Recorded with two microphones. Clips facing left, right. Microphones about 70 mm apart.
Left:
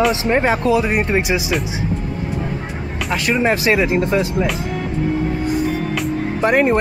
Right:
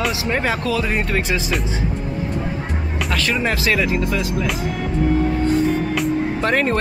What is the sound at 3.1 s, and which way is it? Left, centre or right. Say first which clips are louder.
Speech: left 4 dB; centre.